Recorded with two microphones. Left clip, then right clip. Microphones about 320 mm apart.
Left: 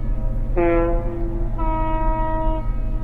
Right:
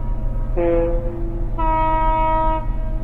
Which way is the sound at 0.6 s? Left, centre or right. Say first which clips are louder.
Even; left.